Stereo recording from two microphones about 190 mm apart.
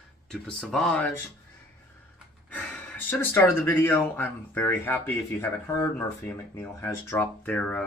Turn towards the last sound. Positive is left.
turn(degrees=10)  # may be behind; listen again after turning